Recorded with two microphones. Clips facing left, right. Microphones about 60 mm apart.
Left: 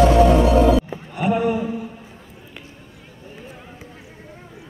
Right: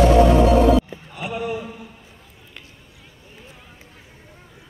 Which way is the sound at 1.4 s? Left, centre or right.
Centre.